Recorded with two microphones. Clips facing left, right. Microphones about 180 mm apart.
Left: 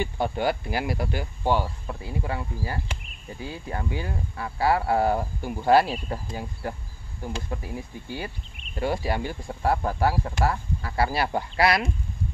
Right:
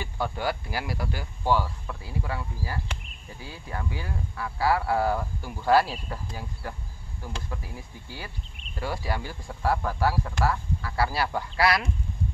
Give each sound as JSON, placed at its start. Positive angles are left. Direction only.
{"t": 0.0, "sound": "speech", "side_deg": 20}
{"t": 7.4, "sound": "speech", "side_deg": 25}